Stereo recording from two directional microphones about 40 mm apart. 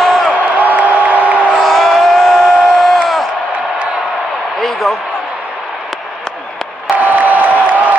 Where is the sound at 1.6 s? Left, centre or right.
Centre.